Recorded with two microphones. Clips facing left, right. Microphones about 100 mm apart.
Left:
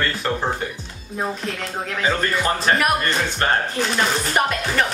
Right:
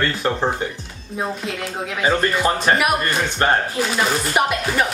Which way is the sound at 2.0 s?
20° right (ahead or behind).